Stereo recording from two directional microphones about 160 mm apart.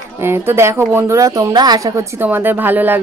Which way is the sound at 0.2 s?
15° right (ahead or behind).